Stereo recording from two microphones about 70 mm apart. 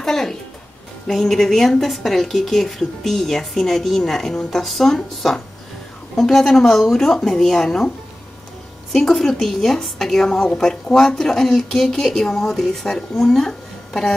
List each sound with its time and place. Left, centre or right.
0.0 s a woman's voice: centre
8.9 s a woman's voice: centre